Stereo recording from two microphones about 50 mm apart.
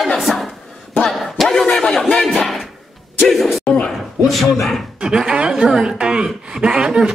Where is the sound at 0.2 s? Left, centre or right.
Centre.